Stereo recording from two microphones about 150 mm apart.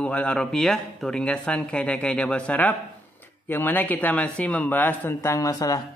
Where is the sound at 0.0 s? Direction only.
10° left (ahead or behind).